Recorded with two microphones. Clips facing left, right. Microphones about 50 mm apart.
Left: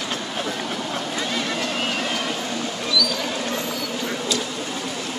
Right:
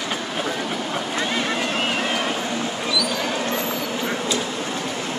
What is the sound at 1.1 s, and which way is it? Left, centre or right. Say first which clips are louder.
Vehicle: right 3 dB; right.